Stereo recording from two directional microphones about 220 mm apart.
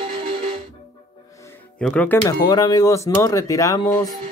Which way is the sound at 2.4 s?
15° left (ahead or behind).